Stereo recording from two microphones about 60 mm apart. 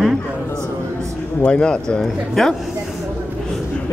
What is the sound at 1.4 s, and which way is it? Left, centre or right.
Speech, centre.